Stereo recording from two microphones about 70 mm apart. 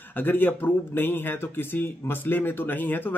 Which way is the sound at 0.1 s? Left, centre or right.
Left.